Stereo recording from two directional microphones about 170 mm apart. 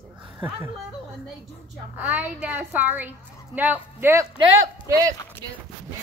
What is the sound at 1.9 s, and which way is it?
A woman's voice, 10° right (ahead or behind).